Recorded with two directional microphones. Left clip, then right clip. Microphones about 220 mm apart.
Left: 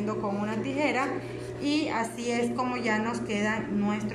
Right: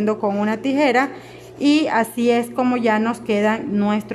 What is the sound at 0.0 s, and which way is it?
A woman's voice, 45° right (ahead or behind).